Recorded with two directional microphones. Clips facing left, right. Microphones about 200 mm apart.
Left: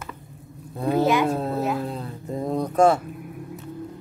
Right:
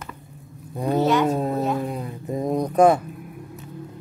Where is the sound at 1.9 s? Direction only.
15° right (ahead or behind).